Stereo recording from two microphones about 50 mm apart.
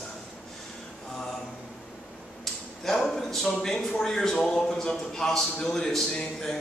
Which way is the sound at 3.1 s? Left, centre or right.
Centre.